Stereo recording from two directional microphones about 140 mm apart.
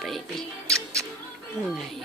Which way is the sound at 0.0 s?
Centre (ahead or behind).